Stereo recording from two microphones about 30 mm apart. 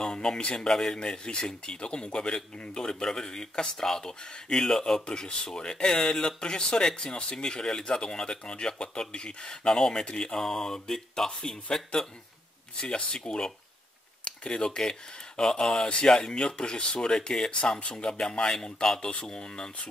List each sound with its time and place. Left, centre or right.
0.0 s speech: left
0.6 s speech: centre
0.9 s speech: left
12.8 s speech: left
16.2 s speech: left